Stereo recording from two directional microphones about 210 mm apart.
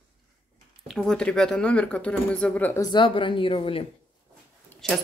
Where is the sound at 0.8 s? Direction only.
Centre (ahead or behind).